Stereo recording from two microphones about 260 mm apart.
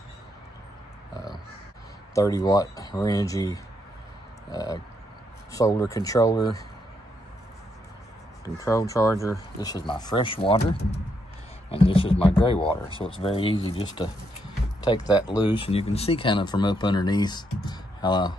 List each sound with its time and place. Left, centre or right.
2.1 s speech: centre
8.6 s speech: centre